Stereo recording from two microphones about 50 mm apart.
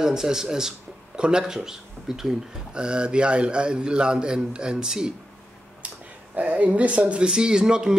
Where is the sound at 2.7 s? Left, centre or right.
Centre.